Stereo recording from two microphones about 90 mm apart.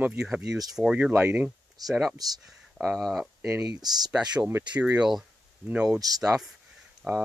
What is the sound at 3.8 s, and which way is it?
Speech, 50° right (ahead or behind).